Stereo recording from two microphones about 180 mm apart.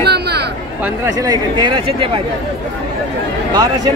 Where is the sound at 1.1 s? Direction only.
20° right (ahead or behind).